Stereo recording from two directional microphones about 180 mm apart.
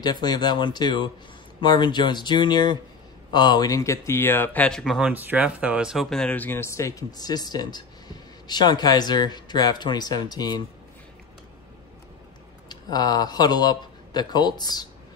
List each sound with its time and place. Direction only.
0.0 s speech: 20° left (ahead or behind)
12.6 s speech: 20° left (ahead or behind)